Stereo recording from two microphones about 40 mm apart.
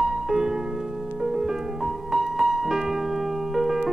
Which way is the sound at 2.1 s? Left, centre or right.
Centre.